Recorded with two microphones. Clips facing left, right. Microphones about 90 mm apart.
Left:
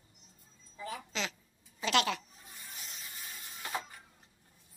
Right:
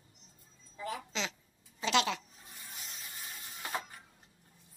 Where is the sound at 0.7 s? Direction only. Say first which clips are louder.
Right 1 dB; 25° right (ahead or behind).